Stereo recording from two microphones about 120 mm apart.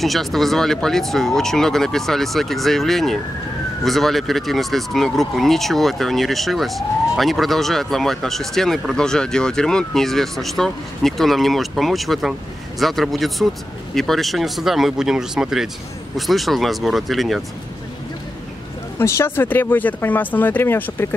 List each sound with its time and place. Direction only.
0.0 s speech: centre (ahead or behind)
18.9 s speech: 20° left (ahead or behind)